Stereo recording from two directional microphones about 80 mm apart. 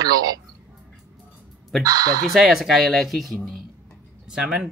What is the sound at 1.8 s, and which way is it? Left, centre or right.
Speech, right.